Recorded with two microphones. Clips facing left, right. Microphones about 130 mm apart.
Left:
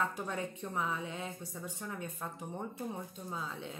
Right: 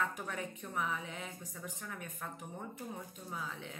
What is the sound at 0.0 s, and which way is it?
A woman's voice, 25° left (ahead or behind).